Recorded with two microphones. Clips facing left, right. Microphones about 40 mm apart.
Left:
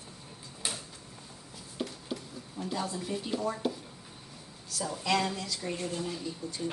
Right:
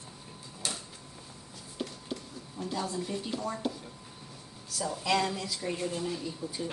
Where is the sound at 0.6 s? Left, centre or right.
Centre.